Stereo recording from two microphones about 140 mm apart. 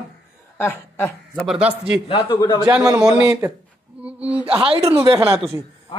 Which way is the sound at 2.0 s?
40° left (ahead or behind).